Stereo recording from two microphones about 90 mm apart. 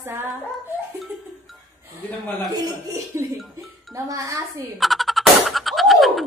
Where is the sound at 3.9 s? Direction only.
40° right (ahead or behind).